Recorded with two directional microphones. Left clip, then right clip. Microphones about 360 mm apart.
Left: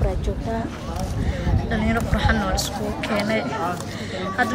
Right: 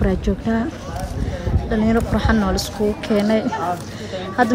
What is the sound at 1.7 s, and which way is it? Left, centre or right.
Speech, centre.